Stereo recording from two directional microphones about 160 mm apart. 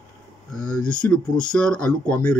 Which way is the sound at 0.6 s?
5° left (ahead or behind).